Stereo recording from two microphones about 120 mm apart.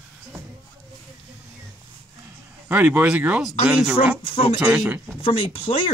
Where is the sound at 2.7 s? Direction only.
15° right (ahead or behind).